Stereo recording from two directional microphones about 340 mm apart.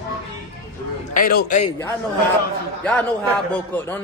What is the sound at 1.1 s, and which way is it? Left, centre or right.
Speech, left.